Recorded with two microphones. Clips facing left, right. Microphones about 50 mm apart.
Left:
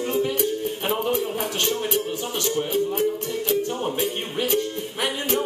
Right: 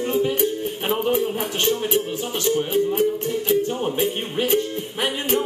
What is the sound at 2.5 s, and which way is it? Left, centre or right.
Music, centre.